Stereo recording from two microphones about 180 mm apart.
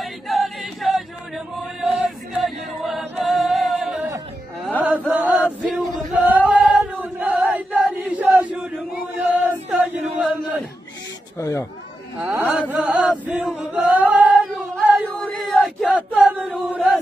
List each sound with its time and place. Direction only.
0.0 s choir: centre (ahead or behind)
4.6 s chant: 5° right (ahead or behind)
6.4 s choir: 5° right (ahead or behind)
7.8 s chant: 5° right (ahead or behind)
11.3 s a sound: 15° left (ahead or behind)
12.4 s chant: 10° right (ahead or behind)
15.0 s a sound: 5° left (ahead or behind)
15.4 s chant: centre (ahead or behind)